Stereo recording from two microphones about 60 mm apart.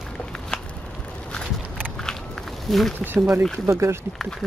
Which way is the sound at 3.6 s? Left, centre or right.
Right.